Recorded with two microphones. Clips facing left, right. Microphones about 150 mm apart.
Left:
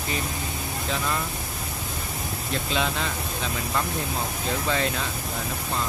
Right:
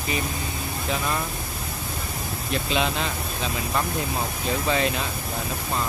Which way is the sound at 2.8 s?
20° right (ahead or behind).